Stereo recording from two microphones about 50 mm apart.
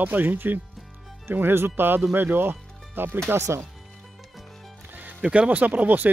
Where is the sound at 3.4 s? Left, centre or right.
Right.